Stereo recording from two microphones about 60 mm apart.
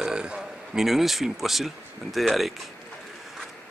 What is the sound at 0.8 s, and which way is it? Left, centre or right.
Speech, centre.